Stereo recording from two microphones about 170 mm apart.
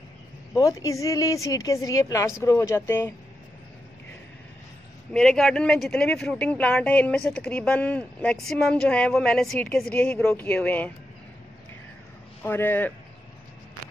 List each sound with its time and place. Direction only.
0.6 s speech: 20° left (ahead or behind)
5.1 s speech: 5° left (ahead or behind)
12.4 s speech: 10° left (ahead or behind)